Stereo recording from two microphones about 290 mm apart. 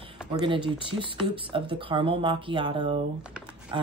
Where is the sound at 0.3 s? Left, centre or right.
Centre.